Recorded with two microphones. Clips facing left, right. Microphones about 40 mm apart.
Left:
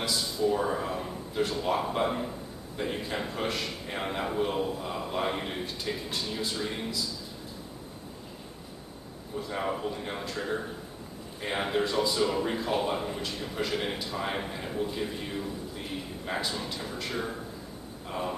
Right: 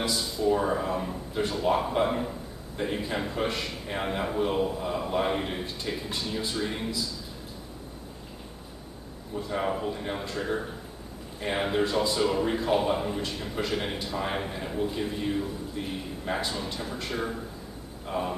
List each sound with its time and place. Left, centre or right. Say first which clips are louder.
0.1 s speech: even; centre
9.5 s speech: right 3 dB; centre